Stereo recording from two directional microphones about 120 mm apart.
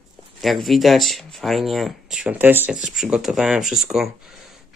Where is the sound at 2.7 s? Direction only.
5° right (ahead or behind).